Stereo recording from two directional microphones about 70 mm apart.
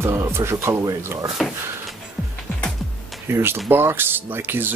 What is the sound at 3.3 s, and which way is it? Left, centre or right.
Speech, right.